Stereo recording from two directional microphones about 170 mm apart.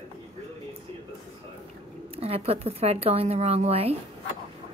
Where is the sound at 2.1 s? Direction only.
35° right (ahead or behind).